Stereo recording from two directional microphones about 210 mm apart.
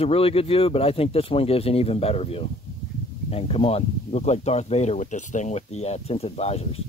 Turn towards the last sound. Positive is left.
turn(degrees=30)  # may be behind; listen again after turning